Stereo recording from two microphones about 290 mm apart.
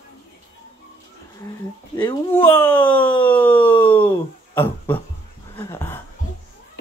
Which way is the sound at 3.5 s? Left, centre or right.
Centre.